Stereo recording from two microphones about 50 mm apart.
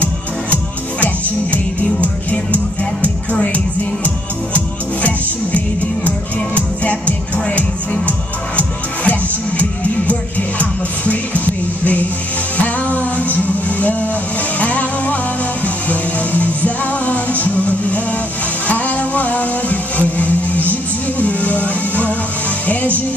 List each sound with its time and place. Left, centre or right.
2.0 s music: left
6.0 s music: left
18.7 s a sound: left
21.2 s music: left